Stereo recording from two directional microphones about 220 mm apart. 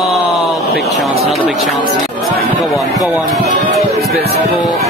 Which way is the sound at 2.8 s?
15° left (ahead or behind).